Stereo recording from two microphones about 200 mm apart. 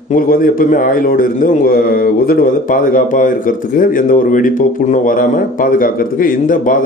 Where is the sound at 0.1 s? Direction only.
45° left (ahead or behind).